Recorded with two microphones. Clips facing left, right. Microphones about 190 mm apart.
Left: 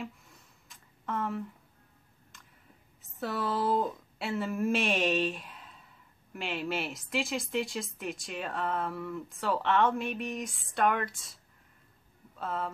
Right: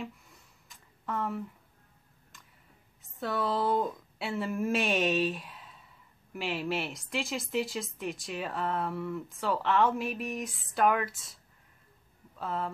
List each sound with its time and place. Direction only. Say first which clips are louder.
0.0 s a sound: even; centre (ahead or behind)
3.0 s a woman's voice: right 1 dB; centre (ahead or behind)
12.4 s a woman's voice: right 1 dB; centre (ahead or behind)